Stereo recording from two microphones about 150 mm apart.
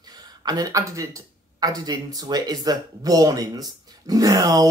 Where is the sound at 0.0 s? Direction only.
25° right (ahead or behind).